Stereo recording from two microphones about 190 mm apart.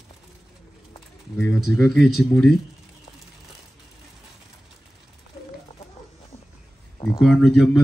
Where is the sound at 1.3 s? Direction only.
10° left (ahead or behind).